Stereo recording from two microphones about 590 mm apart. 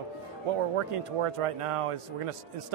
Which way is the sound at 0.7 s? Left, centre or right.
Right.